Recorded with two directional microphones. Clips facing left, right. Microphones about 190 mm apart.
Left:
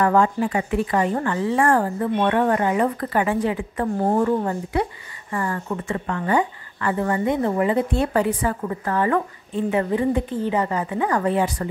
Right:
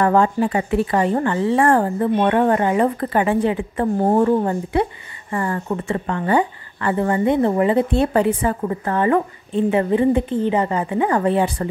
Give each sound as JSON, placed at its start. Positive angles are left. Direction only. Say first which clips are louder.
{"t": 0.0, "sound": "speech", "louder": "right 2 dB", "side_deg": -30}